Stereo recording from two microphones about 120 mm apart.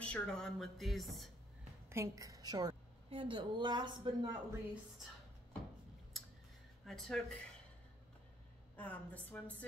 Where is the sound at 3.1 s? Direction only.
45° right (ahead or behind).